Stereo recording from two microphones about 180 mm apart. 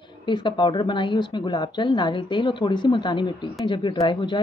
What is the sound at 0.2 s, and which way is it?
A woman's voice, 25° left (ahead or behind).